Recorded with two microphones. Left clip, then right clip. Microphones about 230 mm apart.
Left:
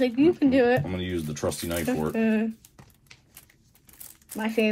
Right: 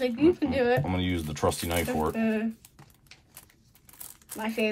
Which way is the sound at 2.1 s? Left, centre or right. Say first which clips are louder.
Left 3 dB; left.